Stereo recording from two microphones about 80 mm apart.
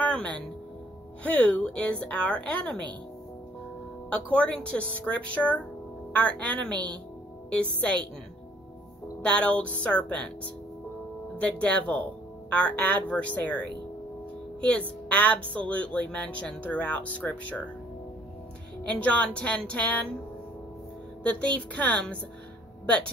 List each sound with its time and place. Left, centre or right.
0.0 s music: centre
1.2 s speech: centre
4.1 s speech: centre
9.2 s speech: centre
11.6 s speech: centre
18.9 s speech: centre
21.2 s speech: centre